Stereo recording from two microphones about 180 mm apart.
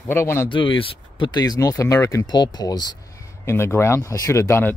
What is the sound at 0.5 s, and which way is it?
Speech, 30° left (ahead or behind).